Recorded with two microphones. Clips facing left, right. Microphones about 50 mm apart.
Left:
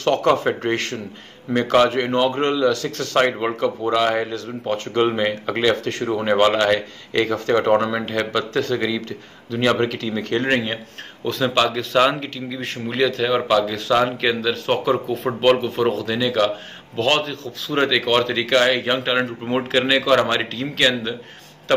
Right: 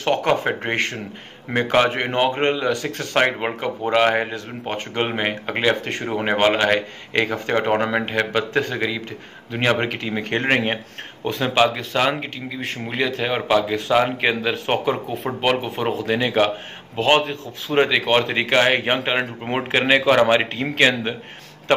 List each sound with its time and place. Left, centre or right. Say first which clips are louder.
0.0 s speech: left 2 dB; centre
11.2 s speech: right 1 dB; centre
12.5 s speech: left 2 dB; centre
16.1 s a man's voice: right 1 dB; right